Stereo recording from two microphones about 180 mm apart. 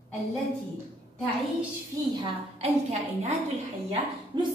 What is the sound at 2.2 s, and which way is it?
Speech, 35° right (ahead or behind).